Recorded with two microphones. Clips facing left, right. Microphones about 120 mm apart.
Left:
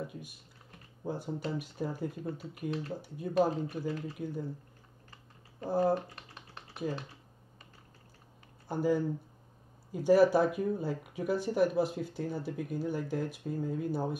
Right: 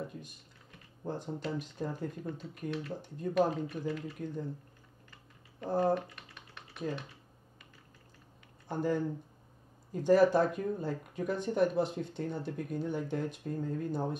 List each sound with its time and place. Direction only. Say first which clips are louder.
0.0 s typing: left 1 dB; 5° left (ahead or behind)
1.0 s speech: left 1 dB; 5° left (ahead or behind)
3.3 s speech: left 1 dB; 30° left (ahead or behind)
4.2 s speech: left 1 dB; 5° left (ahead or behind)
5.7 s speech: left 1 dB; 5° left (ahead or behind)
5.9 s typing: even; 35° left (ahead or behind)
8.6 s speech: left 2 dB; 5° left (ahead or behind)